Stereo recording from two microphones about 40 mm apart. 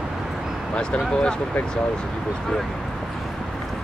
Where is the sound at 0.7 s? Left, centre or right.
Left.